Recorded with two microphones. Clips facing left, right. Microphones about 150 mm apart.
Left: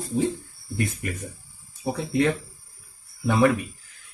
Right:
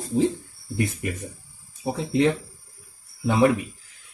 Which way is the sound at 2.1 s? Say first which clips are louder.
Right 2 dB; 25° right (ahead or behind).